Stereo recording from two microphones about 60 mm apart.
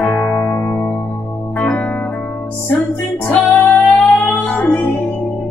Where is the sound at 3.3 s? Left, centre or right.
Left.